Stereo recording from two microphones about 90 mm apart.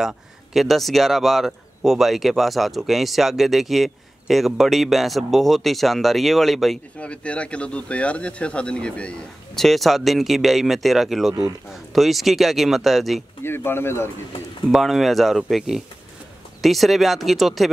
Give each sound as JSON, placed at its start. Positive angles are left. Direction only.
{"t": 0.0, "sound": "speech", "side_deg": -5}
{"t": 7.0, "sound": "speech", "side_deg": 15}
{"t": 13.4, "sound": "speech", "side_deg": 25}
{"t": 14.7, "sound": "speech", "side_deg": 0}